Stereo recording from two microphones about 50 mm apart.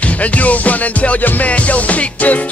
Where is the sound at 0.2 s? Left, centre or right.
Left.